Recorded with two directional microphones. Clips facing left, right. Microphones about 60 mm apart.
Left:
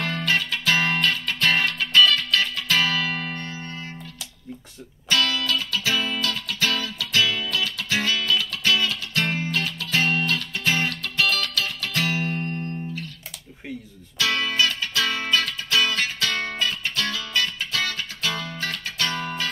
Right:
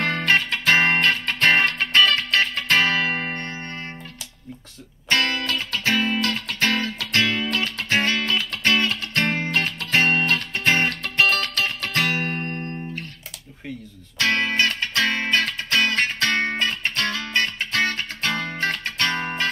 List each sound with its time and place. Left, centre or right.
0.0 s music: right
5.1 s music: right
14.1 s music: right